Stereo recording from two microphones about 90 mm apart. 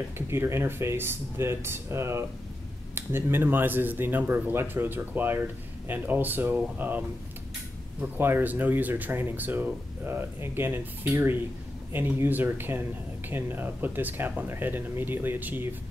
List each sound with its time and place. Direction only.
0.3 s speech: 30° right (ahead or behind)